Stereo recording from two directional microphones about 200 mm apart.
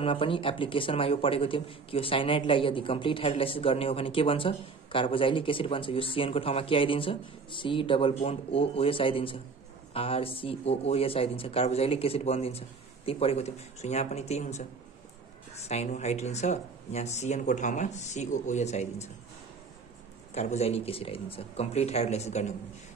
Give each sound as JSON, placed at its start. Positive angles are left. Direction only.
{"t": 0.0, "sound": "a man's voice", "side_deg": 25}
{"t": 20.3, "sound": "speech", "side_deg": 35}